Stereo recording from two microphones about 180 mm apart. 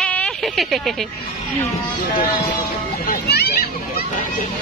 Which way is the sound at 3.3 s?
60° left (ahead or behind).